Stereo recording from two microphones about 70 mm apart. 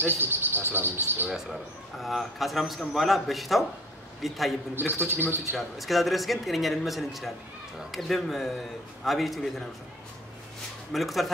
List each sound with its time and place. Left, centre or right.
0.0 s cricket: right
1.3 s a man's voice: centre
4.9 s cricket: right
5.6 s a man's voice: centre
10.9 s a man's voice: centre